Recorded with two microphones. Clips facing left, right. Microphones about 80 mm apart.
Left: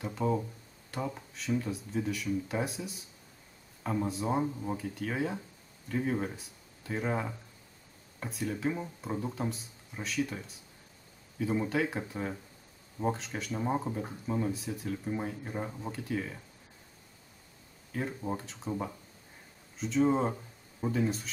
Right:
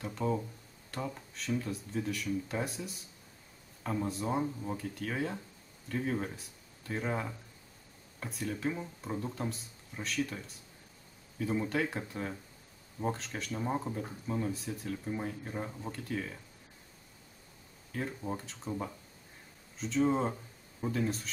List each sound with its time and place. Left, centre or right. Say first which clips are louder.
0.0 s speech: left 2 dB; centre
17.9 s speech: left 2 dB; centre